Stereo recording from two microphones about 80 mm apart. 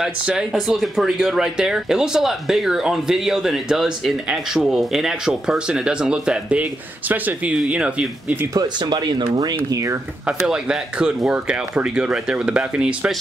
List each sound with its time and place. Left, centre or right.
0.0 s speech: centre
8.5 s speech: right
9.7 s speech: right
10.2 s speech: centre